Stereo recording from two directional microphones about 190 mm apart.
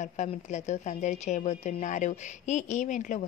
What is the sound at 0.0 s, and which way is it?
A woman's voice, 40° left (ahead or behind).